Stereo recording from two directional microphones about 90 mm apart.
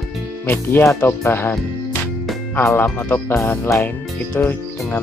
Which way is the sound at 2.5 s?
25° left (ahead or behind).